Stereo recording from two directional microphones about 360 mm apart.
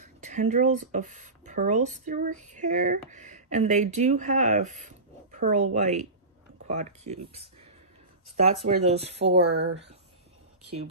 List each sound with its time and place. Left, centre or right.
0.0 s speech: centre
9.2 s speech: right